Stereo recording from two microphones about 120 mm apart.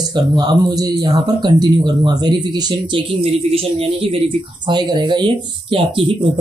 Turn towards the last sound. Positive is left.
turn(degrees=-45)  # may be behind; listen again after turning